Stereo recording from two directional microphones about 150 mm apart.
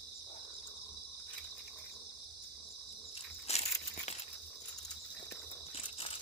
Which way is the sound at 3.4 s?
45° left (ahead or behind).